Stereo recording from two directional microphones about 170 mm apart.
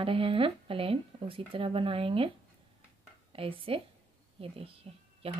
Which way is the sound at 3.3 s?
30° right (ahead or behind).